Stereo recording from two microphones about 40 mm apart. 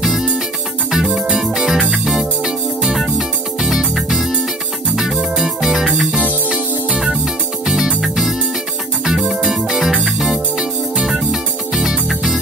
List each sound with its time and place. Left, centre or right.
0.0 s music: centre
7.6 s music: centre
10.3 s music: centre